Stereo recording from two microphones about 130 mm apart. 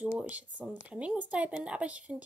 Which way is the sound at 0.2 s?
10° right (ahead or behind).